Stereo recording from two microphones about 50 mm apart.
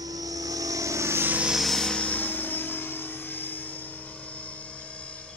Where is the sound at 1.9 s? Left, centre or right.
Left.